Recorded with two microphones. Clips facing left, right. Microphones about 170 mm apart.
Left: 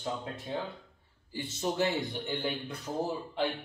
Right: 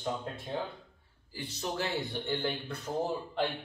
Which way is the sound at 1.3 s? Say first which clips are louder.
Left 4 dB; 25° left (ahead or behind).